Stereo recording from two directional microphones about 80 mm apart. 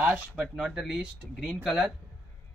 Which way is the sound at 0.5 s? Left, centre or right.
Centre.